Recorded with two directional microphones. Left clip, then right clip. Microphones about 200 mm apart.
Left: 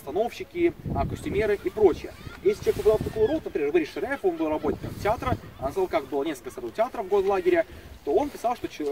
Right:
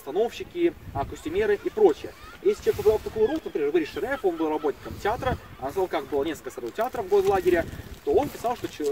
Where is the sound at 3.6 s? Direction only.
20° left (ahead or behind).